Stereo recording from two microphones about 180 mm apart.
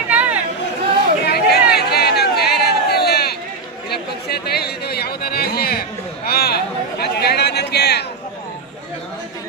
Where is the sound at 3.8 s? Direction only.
60° left (ahead or behind).